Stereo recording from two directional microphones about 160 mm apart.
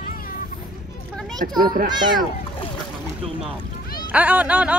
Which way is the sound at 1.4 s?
65° right (ahead or behind).